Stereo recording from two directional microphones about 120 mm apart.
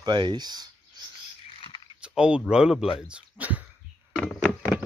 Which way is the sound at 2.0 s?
10° right (ahead or behind).